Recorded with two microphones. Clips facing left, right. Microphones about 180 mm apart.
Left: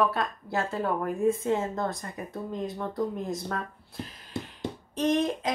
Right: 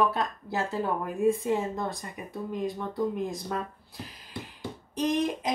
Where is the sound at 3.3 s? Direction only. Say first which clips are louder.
Left 1 dB; 15° right (ahead or behind).